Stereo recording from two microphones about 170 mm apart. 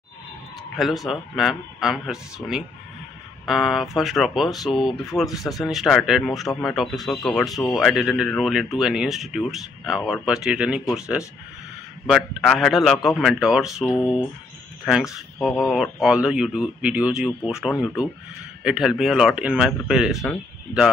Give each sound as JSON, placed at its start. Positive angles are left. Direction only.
{"t": 0.7, "sound": "speech", "side_deg": 0}